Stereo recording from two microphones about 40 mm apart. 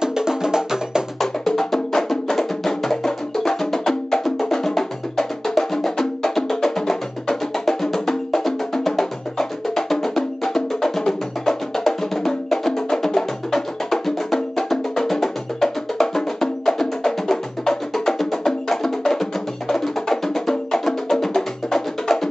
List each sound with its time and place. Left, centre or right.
0.0 s music: centre
1.2 s music: centre